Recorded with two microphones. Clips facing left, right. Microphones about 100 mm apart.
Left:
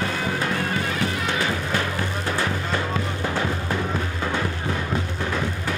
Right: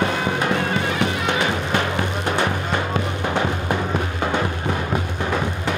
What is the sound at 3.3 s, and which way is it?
Music, 20° right (ahead or behind).